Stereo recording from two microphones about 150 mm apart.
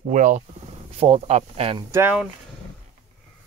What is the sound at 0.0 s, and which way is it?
Speech, 60° right (ahead or behind).